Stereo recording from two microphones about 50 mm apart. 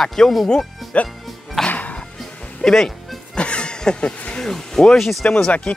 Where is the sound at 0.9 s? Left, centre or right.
Left.